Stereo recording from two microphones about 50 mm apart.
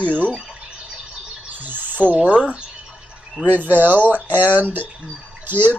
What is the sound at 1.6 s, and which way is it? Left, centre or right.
Cricket, right.